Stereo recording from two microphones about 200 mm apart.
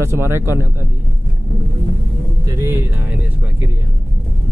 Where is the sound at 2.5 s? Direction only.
15° right (ahead or behind).